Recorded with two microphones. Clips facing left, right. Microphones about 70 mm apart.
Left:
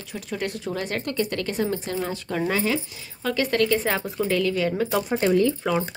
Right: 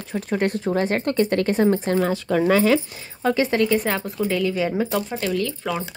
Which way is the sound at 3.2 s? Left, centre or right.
Right.